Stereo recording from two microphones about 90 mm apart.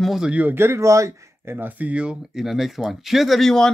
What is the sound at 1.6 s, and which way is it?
Speech, 20° right (ahead or behind).